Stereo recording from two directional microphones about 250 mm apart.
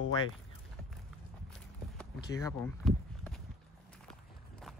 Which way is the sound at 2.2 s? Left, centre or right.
Centre.